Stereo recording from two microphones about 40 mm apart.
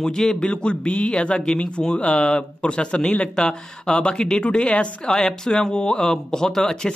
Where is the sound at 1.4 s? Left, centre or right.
Centre.